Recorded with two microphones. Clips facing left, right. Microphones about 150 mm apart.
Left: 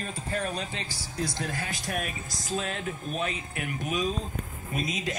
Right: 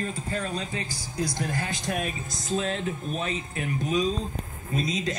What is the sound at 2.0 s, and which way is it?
A man's voice, 25° right (ahead or behind).